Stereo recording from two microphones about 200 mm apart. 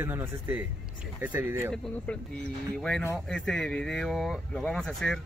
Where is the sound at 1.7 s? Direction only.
5° left (ahead or behind).